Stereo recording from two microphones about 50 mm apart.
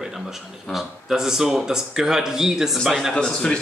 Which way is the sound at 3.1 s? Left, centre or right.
Centre.